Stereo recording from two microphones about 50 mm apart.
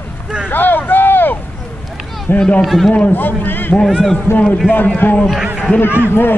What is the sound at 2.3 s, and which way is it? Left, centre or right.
Speech, left.